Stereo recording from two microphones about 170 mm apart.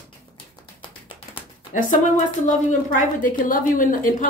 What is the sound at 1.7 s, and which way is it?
A woman's voice, 50° left (ahead or behind).